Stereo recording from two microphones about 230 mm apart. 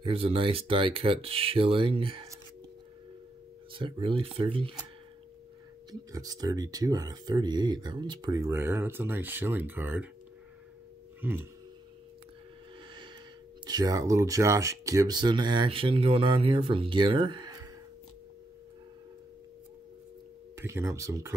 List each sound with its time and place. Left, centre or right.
0.0 s speech: right
3.7 s speech: right
5.9 s speech: centre
11.1 s a sound: centre
13.7 s speech: centre
20.5 s speech: centre